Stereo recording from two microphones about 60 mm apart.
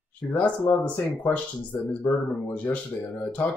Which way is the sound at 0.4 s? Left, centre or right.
Left.